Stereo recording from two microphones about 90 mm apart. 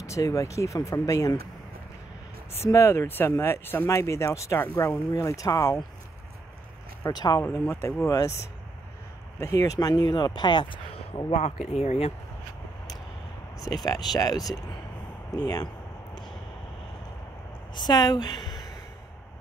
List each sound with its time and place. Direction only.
0.0 s speech: 35° left (ahead or behind)
2.6 s speech: 30° left (ahead or behind)
7.1 s speech: 50° left (ahead or behind)
7.5 s speech: 30° left (ahead or behind); by 11.5 s 65° left (ahead or behind)
13.8 s speech: 45° left (ahead or behind)
17.7 s a woman's voice: 50° left (ahead or behind)